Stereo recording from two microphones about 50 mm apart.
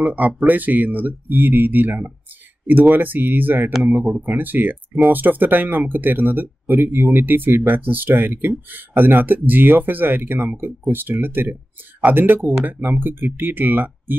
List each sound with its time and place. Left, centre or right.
0.0 s speech: right